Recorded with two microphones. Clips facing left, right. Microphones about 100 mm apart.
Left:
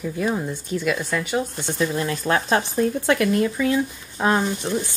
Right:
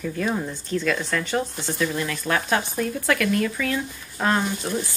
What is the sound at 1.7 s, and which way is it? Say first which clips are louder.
Speech: left 3 dB; 30° left (ahead or behind).